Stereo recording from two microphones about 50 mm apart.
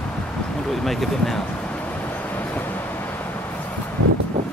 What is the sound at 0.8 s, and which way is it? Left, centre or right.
Speech, centre.